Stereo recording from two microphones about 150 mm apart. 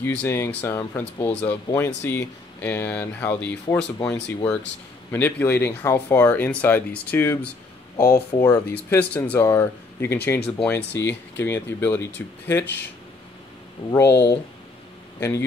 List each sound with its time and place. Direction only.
0.0 s speech: 15° left (ahead or behind)
8.4 s speech: 15° left (ahead or behind)
13.9 s speech: 15° left (ahead or behind)